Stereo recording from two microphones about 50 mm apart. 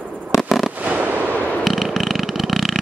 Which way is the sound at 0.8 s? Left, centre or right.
Right.